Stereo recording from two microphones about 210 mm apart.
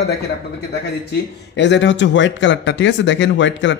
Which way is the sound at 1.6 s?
60° left (ahead or behind).